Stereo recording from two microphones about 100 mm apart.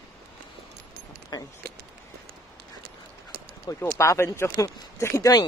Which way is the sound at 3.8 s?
25° left (ahead or behind).